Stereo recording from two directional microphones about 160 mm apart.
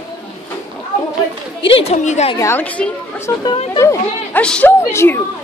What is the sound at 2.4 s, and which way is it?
A woman's voice, 15° left (ahead or behind).